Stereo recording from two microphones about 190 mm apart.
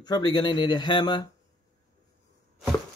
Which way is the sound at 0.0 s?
20° left (ahead or behind).